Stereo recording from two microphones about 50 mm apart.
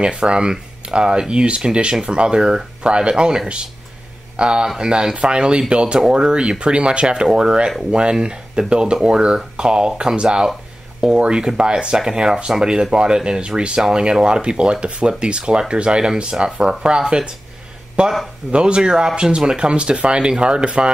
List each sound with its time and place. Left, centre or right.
0.0 s speech: centre